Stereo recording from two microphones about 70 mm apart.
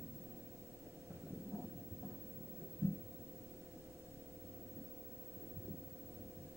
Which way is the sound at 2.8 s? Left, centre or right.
Right.